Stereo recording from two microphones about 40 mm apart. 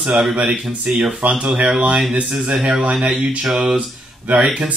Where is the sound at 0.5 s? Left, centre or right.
Centre.